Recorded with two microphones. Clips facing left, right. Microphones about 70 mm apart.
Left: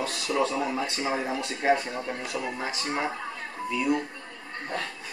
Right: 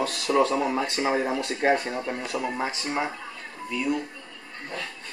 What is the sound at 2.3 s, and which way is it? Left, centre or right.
Speech, right.